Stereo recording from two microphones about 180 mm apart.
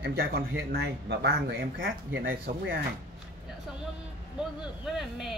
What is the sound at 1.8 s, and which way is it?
Speech, 90° right.